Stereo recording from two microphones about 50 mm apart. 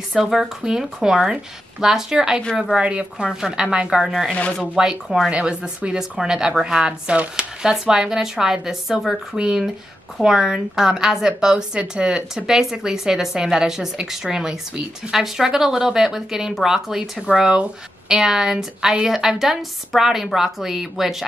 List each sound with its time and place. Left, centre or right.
0.2 s a woman's voice: centre; by 3.3 s right
3.3 s a woman's voice: centre
4.0 s a woman's voice: centre
4.3 s speech: left
4.7 s speech: centre
5.3 s a woman's voice: right; by 21.3 s centre